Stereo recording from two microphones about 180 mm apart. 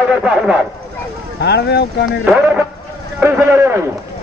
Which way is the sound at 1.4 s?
70° left (ahead or behind).